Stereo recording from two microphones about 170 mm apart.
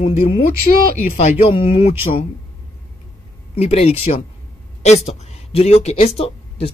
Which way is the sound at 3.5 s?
35° left (ahead or behind).